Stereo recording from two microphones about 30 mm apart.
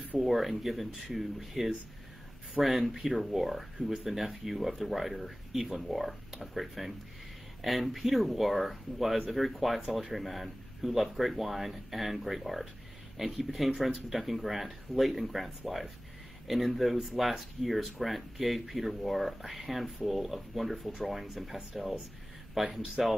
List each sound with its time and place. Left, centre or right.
0.2 s speech: centre
2.9 s speech: centre
22.6 s speech: centre